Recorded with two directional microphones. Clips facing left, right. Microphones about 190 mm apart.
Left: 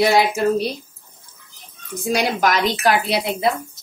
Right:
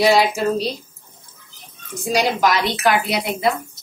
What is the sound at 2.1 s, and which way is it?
Speech, 50° left (ahead or behind).